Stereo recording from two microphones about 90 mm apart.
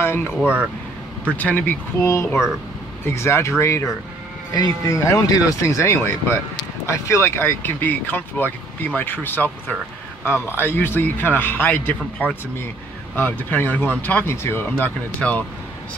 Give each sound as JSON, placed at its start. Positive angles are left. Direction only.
{"t": 0.0, "sound": "speech", "side_deg": 25}
{"t": 0.4, "sound": "speech", "side_deg": -15}
{"t": 1.3, "sound": "speech", "side_deg": 20}
{"t": 2.0, "sound": "speech", "side_deg": 30}